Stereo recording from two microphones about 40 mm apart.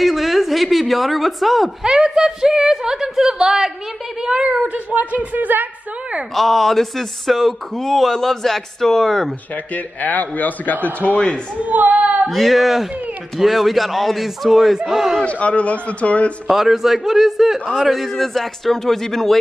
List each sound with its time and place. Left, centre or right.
0.0 s a sound: centre
1.8 s a woman's voice: centre; by 5.7 s right
6.3 s speech: centre
10.0 s a man's voice: left
11.0 s speech: left
11.5 s speech: right
12.3 s a woman's voice: centre
15.2 s a man's voice: left
16.4 s a woman's voice: centre
17.9 s speech: centre